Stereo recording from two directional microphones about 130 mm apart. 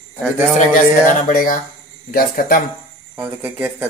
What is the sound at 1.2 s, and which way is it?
Speech, 90° left.